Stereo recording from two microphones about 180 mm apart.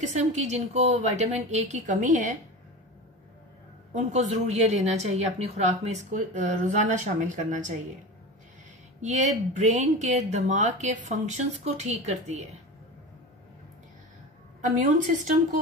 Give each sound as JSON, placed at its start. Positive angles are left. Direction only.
{"t": 0.0, "sound": "speech", "side_deg": -40}
{"t": 3.9, "sound": "speech", "side_deg": -40}
{"t": 9.0, "sound": "speech", "side_deg": -40}
{"t": 14.6, "sound": "a woman's voice", "side_deg": -45}